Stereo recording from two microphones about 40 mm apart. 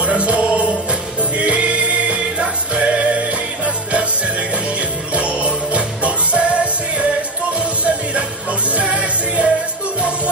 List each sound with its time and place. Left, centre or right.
0.0 s music: right